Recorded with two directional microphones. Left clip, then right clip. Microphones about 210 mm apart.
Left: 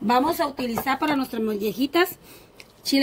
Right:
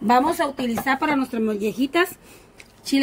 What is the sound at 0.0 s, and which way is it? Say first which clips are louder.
Speech: right 3 dB; 15° right (ahead or behind).